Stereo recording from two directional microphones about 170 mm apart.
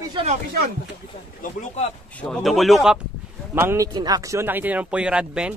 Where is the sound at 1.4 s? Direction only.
45° left (ahead or behind).